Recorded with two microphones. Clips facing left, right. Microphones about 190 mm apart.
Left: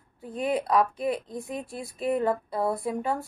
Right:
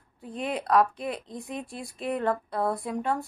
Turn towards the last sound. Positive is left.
turn(degrees=0)  # may be behind; listen again after turning